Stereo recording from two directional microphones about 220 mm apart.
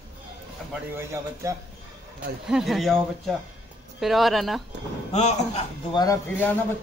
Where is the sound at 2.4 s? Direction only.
Centre (ahead or behind).